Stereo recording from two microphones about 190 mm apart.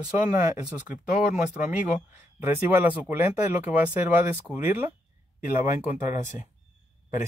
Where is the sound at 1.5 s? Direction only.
5° right (ahead or behind).